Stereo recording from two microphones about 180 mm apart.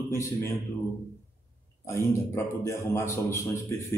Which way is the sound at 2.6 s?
15° left (ahead or behind).